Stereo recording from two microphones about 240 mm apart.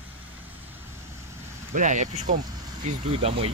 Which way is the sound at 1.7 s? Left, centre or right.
Right.